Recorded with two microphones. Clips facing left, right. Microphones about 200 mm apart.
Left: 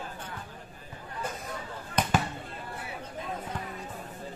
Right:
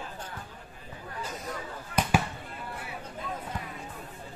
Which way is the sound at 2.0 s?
10° right (ahead or behind).